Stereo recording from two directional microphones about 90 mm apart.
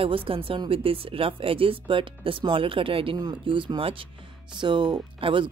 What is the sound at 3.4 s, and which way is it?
Speech, 70° right (ahead or behind).